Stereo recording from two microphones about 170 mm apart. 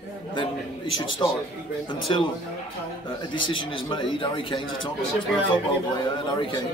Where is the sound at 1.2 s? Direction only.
25° left (ahead or behind).